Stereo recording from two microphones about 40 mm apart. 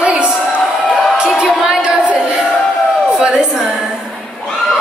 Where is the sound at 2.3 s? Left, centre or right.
Centre.